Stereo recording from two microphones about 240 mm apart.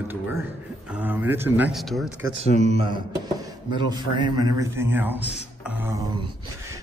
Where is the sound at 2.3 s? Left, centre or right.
Right.